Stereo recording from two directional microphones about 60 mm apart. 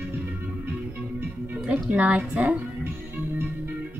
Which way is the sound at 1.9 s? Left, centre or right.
Right.